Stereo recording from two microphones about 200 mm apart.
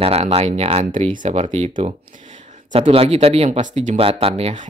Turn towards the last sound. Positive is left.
turn(degrees=-30)  # may be behind; listen again after turning